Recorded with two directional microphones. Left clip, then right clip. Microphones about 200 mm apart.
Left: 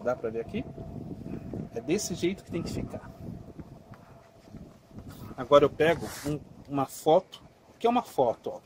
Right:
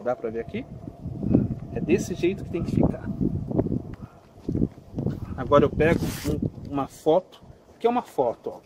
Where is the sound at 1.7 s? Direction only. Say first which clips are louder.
Right 5 dB; 40° left (ahead or behind).